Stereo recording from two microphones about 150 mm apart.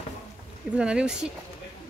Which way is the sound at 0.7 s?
5° right (ahead or behind).